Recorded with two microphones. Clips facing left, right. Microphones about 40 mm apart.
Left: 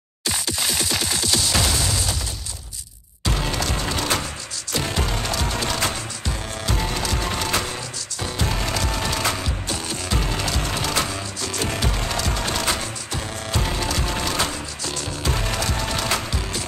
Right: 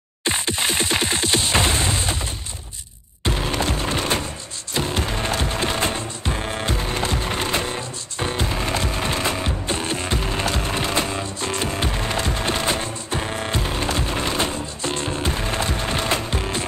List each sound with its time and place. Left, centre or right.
0.2 s music: right
3.3 s music: right